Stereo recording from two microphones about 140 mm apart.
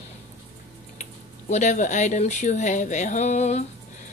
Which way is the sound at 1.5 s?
60° left (ahead or behind).